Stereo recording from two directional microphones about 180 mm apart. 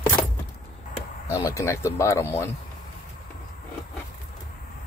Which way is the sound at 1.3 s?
15° left (ahead or behind).